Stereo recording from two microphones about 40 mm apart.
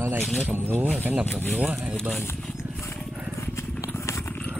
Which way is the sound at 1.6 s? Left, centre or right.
Right.